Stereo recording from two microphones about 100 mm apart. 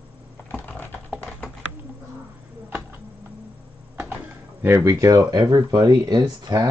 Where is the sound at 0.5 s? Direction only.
20° left (ahead or behind).